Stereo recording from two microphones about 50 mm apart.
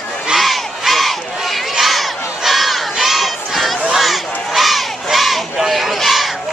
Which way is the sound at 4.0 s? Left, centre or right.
Centre.